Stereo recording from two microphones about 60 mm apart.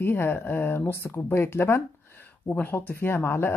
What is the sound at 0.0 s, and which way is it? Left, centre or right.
Speech, left.